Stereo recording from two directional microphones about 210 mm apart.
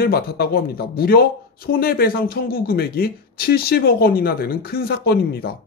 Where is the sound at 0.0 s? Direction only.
50° left (ahead or behind).